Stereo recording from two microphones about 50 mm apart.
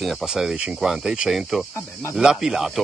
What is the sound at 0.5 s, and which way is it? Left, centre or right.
Speech, right.